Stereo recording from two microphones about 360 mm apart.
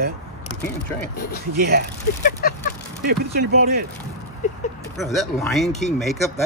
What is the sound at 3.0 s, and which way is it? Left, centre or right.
Speech, right.